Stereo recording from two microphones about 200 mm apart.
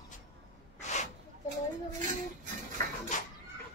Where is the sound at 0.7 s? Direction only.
35° left (ahead or behind).